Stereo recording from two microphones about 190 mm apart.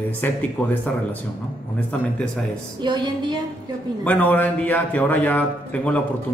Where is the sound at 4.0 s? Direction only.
10° left (ahead or behind).